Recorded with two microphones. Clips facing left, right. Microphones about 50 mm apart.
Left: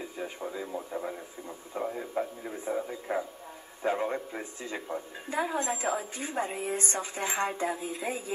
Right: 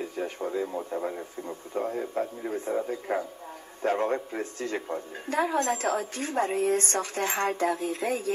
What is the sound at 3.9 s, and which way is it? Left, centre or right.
Speech, centre.